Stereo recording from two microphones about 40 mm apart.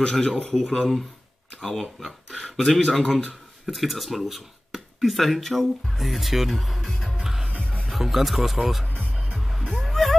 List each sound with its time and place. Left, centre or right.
0.0 s speech: centre
1.6 s speech: centre
3.6 s speech: centre
7.4 s music: left
7.9 s speech: centre
9.1 s music: right
9.8 s music: centre